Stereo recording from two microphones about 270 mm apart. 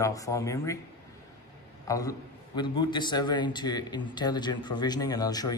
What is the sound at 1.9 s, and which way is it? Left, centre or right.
A man's voice, centre.